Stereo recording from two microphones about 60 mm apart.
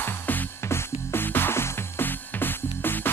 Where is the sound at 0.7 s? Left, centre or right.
Left.